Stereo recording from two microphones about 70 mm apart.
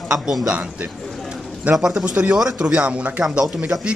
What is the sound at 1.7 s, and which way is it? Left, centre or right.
Speech, centre.